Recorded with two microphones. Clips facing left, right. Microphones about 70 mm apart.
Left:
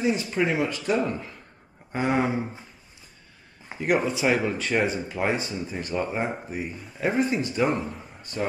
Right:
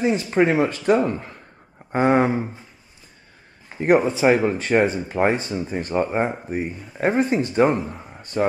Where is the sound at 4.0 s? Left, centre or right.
Right.